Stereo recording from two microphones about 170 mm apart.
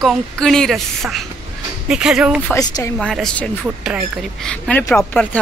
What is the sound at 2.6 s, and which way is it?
Speech, 20° left (ahead or behind).